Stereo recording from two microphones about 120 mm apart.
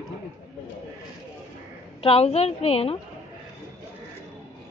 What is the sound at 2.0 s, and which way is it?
Speech, 60° left (ahead or behind).